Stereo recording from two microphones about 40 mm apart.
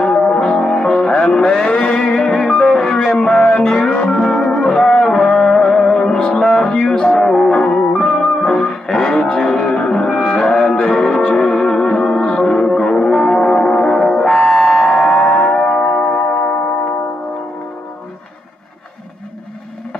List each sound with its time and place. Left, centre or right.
0.0 s music: left